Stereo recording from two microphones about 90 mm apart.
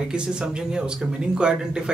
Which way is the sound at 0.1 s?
10° right (ahead or behind).